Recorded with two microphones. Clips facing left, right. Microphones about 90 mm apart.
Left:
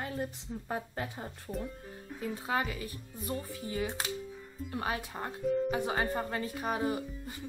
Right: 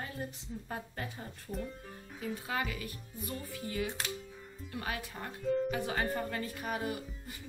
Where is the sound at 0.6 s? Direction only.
40° left (ahead or behind).